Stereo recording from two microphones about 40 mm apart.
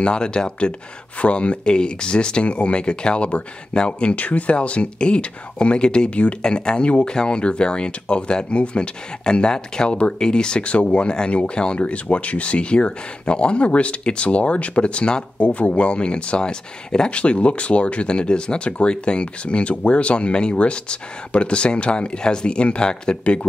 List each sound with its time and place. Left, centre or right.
0.0 s speech: left
4.1 s speech: left
6.4 s speech: left
11.8 s speech: left